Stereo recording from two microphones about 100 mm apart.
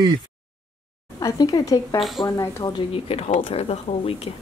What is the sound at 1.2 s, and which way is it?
Speech, 40° left (ahead or behind).